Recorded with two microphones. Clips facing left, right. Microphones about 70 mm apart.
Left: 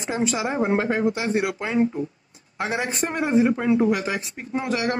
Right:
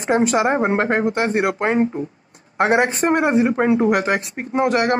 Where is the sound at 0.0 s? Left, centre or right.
Right.